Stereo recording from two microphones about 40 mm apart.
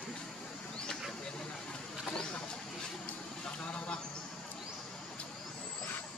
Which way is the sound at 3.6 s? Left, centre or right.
Left.